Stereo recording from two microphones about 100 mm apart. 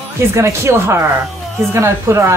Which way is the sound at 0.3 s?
30° right (ahead or behind).